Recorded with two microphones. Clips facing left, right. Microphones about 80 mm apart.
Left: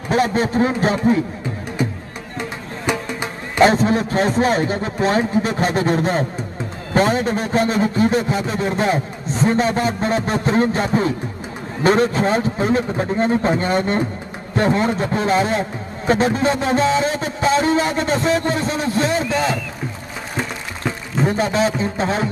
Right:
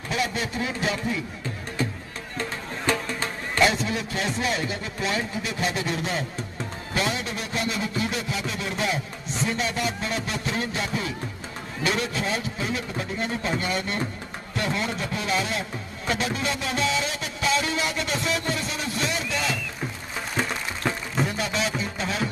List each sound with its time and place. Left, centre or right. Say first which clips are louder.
0.1 s a man's voice: left 10 dB; left
1.8 s music: left 5 dB; centre
3.6 s a man's voice: left 10 dB; left
21.2 s a man's voice: left 9 dB; left